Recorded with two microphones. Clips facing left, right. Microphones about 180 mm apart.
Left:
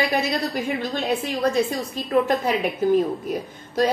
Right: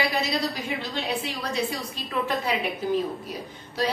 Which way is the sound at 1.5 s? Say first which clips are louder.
Left 6 dB; 45° left (ahead or behind).